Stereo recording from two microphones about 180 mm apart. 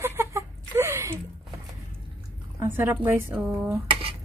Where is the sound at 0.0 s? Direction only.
15° right (ahead or behind).